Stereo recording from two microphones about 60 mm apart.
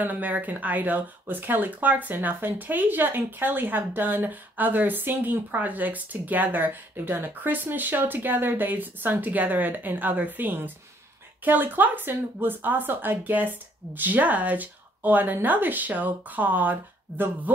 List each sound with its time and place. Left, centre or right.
0.0 s speech: right